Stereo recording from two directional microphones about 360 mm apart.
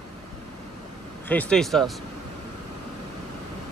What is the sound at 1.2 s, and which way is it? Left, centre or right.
Speech, centre.